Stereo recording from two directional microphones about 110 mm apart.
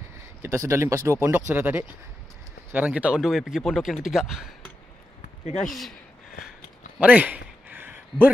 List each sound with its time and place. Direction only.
0.4 s speech: 25° right (ahead or behind); by 4.5 s 5° right (ahead or behind)
5.6 s speech: 5° left (ahead or behind)
7.0 s a sound: 15° right (ahead or behind)